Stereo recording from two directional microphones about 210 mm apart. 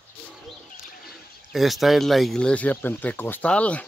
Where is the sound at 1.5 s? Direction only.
Centre (ahead or behind).